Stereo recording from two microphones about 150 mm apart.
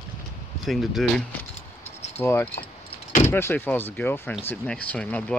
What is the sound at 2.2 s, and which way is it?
Speech, 15° left (ahead or behind).